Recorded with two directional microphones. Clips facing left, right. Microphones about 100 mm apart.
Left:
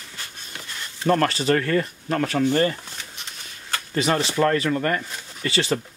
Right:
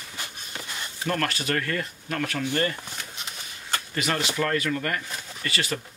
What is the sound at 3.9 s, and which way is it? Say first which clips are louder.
Speech: left 6 dB; 30° left (ahead or behind).